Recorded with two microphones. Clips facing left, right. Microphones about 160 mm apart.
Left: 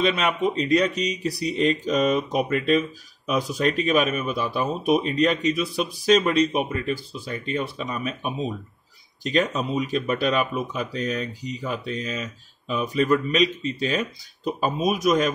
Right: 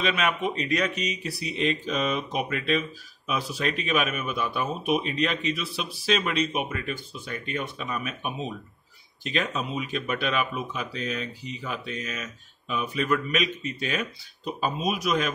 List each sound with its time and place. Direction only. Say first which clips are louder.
0.0 s speech: left 4 dB; 35° left (ahead or behind)
14.6 s speech: left 5 dB; 45° left (ahead or behind)